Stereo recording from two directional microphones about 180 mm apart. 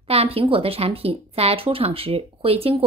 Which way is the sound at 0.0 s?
35° right (ahead or behind).